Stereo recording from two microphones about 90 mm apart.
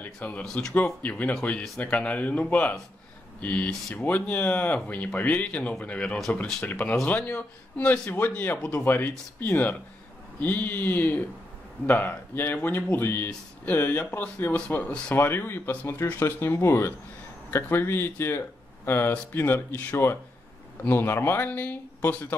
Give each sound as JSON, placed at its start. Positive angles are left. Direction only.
{"t": 0.0, "sound": "speech", "side_deg": 15}